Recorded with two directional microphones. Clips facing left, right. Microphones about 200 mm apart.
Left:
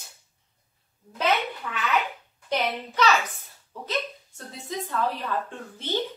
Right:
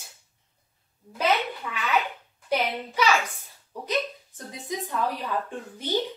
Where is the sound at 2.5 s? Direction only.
10° right (ahead or behind).